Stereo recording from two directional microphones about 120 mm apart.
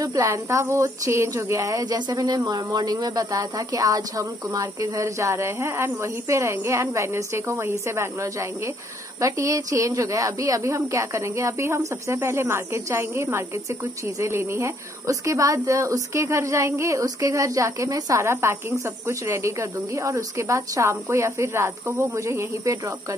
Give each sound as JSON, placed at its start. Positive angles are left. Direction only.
{"t": 0.0, "sound": "speech", "side_deg": -30}